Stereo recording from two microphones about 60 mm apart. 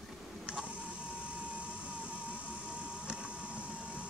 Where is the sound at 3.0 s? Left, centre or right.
Centre.